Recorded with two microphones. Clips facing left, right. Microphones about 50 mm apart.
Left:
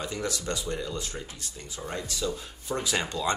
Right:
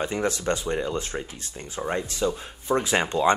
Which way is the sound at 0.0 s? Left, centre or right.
Right.